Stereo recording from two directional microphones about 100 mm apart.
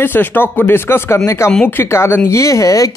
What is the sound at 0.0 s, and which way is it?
Speech, 20° left (ahead or behind).